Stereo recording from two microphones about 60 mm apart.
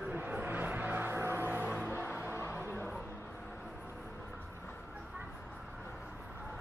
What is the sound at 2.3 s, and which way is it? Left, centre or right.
Music, left.